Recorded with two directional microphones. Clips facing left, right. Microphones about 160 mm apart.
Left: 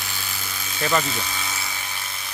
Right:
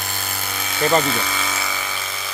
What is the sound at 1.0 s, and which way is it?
Electric toothbrush, 85° right.